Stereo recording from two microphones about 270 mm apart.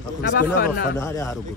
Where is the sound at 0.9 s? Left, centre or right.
Centre.